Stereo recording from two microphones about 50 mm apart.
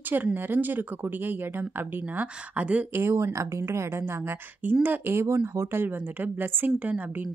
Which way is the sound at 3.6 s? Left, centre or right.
Right.